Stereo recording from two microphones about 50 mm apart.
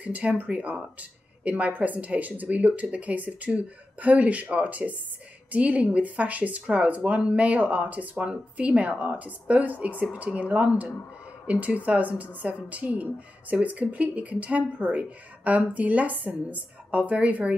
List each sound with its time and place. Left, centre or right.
0.0 s speech: right